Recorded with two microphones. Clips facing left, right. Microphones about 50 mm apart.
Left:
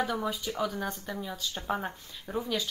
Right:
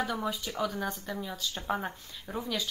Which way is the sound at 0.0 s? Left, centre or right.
Centre.